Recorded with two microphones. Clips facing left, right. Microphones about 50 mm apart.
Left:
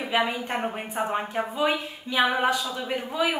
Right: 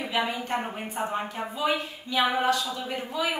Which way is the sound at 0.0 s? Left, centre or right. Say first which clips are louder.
Left 3 dB; left.